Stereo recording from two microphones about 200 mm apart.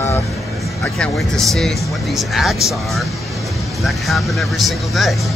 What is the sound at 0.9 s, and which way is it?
Speech, 5° left (ahead or behind).